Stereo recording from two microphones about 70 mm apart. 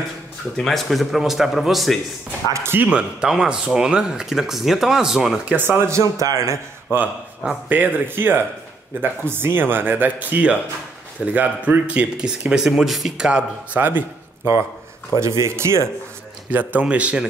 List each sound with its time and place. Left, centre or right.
0.6 s speech: centre
2.5 s speech: right
2.9 s speech: centre
5.6 s speech: right
5.9 s speech: right
7.7 s speech: right; by 13.4 s centre
13.7 s speech: right
15.1 s speech: right
16.4 s speech: right